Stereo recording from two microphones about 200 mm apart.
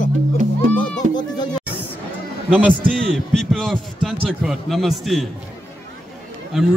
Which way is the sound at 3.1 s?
Centre (ahead or behind).